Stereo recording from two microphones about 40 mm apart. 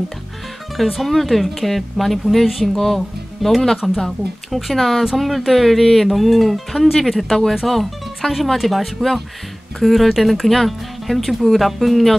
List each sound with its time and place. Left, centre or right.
0.9 s speech: centre
7.6 s music: centre
8.5 s speech: centre